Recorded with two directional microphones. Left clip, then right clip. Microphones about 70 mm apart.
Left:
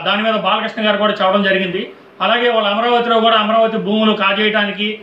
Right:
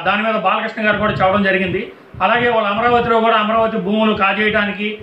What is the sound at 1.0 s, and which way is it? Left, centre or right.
A man's voice, centre.